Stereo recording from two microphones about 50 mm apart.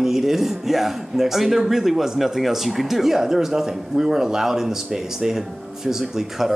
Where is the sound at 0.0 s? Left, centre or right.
Centre.